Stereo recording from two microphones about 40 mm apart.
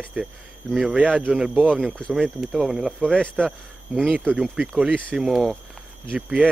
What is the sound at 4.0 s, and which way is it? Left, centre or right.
Cricket, right.